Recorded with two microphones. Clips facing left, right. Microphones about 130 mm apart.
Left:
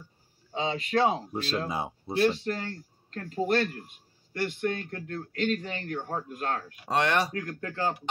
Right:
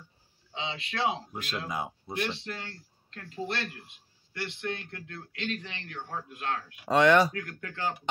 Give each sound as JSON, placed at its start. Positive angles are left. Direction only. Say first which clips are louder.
{"t": 0.5, "sound": "speech", "louder": "left 7 dB", "side_deg": 45}